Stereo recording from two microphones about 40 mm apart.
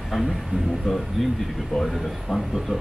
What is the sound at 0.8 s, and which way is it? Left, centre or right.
Speech, centre.